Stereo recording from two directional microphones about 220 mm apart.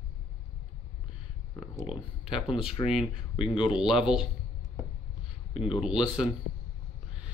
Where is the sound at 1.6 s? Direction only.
Centre (ahead or behind).